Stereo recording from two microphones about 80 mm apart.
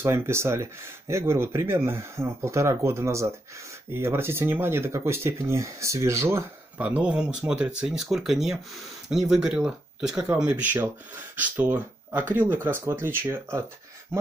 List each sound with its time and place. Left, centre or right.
0.0 s speech: right
6.8 s speech: centre